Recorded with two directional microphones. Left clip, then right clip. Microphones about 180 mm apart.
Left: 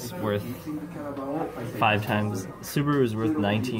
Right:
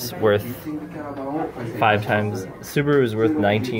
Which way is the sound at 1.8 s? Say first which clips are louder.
Right 5 dB; centre (ahead or behind).